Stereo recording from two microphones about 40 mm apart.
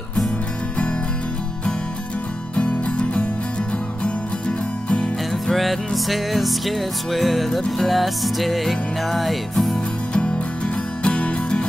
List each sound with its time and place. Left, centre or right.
2.5 s music: left
5.5 s music: centre
11.1 s music: left